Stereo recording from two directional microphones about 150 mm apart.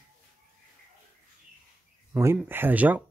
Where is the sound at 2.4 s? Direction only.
15° right (ahead or behind).